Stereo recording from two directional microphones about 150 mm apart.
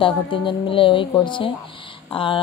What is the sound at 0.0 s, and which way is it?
Speech, 35° left (ahead or behind).